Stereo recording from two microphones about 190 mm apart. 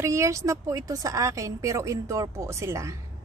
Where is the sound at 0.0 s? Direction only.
15° right (ahead or behind).